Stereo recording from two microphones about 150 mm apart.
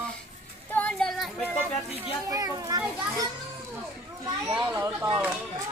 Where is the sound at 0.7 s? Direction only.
10° left (ahead or behind).